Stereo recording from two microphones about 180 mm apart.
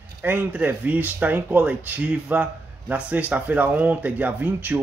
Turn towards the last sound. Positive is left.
turn(degrees=-10)  # may be behind; listen again after turning